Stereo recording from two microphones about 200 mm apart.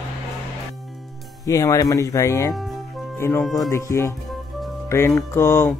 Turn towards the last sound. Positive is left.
turn(degrees=10)  # may be behind; listen again after turning